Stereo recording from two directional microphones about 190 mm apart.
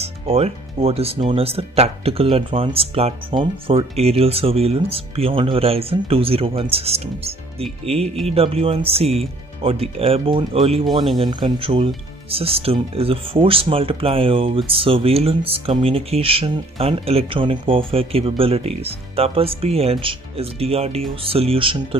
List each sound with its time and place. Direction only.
0.0 s speech: 35° right (ahead or behind)